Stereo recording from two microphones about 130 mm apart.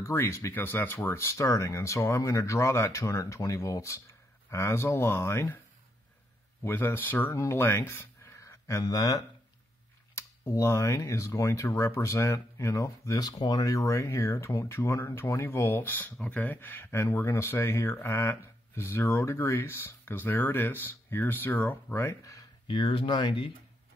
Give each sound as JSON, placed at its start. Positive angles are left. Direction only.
{"t": 0.0, "sound": "speech", "side_deg": 20}
{"t": 6.6, "sound": "speech", "side_deg": 15}
{"t": 22.7, "sound": "speech", "side_deg": 40}